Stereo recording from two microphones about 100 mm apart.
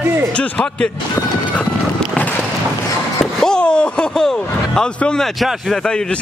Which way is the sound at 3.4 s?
10° left (ahead or behind).